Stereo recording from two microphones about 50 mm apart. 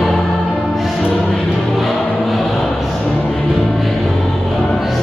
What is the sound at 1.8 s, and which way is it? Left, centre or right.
Music, centre.